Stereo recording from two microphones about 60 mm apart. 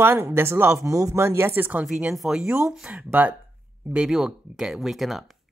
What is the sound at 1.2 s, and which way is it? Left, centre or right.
Speech, right.